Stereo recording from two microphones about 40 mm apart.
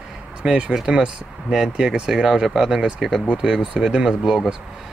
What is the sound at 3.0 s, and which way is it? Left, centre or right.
Speech, centre.